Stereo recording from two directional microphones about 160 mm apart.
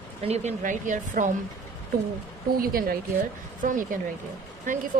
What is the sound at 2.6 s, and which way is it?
A woman's voice, 65° right (ahead or behind).